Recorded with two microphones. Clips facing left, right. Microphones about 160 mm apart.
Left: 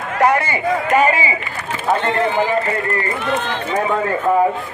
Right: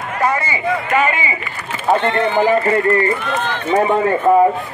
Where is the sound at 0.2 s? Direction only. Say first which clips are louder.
Left 3 dB; 60° left (ahead or behind).